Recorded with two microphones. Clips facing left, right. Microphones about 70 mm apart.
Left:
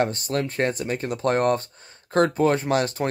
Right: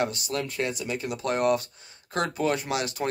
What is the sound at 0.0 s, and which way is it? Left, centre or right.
Speech, left.